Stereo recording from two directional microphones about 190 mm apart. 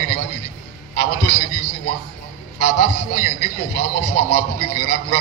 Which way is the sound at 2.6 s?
50° left (ahead or behind).